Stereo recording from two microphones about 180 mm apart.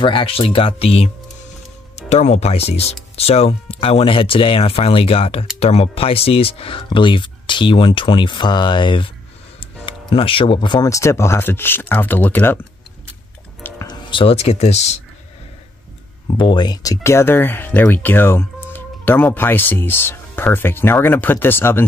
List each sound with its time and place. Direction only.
0.0 s speech: 30° left (ahead or behind); by 12.5 s 10° left (ahead or behind)
13.6 s music: 10° left (ahead or behind)
13.8 s speech: 30° left (ahead or behind)
16.3 s speech: 25° left (ahead or behind)